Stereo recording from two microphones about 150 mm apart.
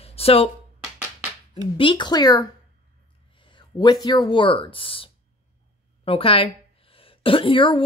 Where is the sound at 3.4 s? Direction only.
30° left (ahead or behind).